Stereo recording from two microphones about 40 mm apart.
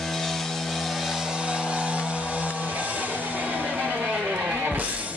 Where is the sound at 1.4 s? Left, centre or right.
Right.